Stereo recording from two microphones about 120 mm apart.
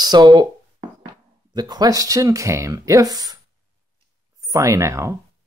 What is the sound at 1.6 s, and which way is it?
Speech, 35° right (ahead or behind).